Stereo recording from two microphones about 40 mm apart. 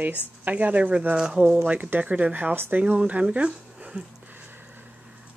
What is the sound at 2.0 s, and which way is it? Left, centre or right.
Speech, right.